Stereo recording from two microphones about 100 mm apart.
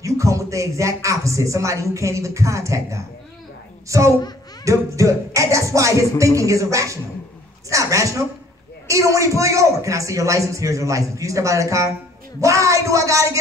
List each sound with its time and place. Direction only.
0.0 s a man's voice: 30° right (ahead or behind)
4.6 s a man's voice: 30° right (ahead or behind)